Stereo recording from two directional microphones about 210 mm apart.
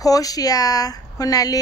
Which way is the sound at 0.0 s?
15° left (ahead or behind).